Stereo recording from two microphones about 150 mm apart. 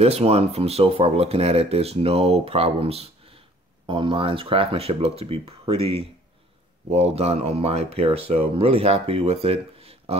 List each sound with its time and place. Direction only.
0.0 s speech: 40° right (ahead or behind)